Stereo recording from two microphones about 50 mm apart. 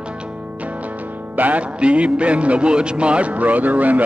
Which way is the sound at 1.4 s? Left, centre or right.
Right.